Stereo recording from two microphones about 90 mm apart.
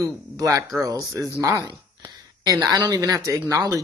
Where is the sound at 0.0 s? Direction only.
40° right (ahead or behind).